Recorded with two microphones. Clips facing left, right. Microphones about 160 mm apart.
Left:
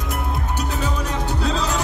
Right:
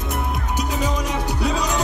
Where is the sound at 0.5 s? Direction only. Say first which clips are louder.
Right 3 dB; 10° right (ahead or behind).